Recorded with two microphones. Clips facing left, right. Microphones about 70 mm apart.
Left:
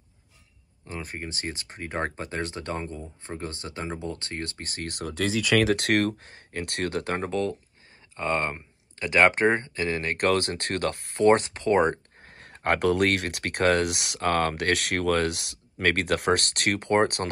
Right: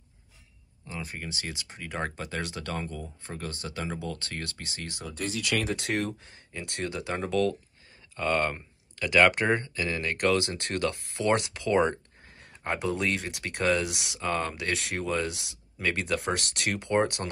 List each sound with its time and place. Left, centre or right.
0.8 s speech: left
7.2 s speech: left